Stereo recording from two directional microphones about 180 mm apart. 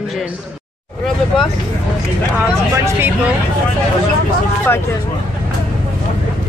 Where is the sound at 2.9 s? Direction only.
10° right (ahead or behind).